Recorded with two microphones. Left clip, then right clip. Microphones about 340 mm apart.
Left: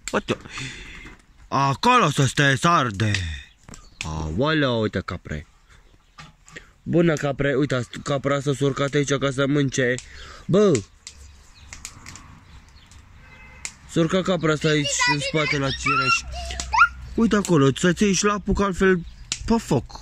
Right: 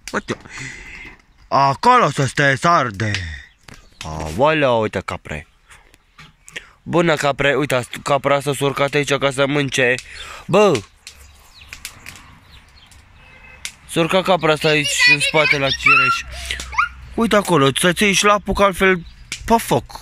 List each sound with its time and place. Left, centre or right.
0.1 s speech: centre
6.5 s speech: centre
14.0 s speech: centre
16.0 s speech: centre
16.5 s a sound: centre
17.2 s speech: centre